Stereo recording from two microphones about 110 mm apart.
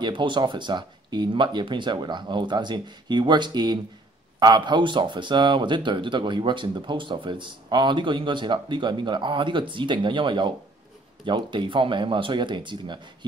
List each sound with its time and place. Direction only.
0.0 s speech: 45° right (ahead or behind)